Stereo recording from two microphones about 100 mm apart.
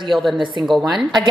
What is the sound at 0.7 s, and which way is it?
Speech, centre (ahead or behind).